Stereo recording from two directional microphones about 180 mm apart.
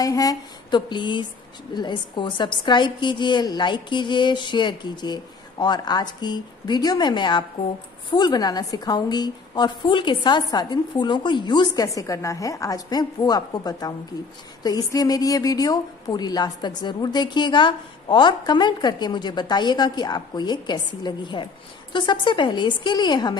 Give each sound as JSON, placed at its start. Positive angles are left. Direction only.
{"t": 0.0, "sound": "a woman's voice", "side_deg": 20}